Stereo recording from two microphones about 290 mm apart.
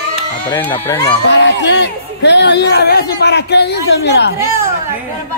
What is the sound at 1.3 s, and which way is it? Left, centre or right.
Speech, left.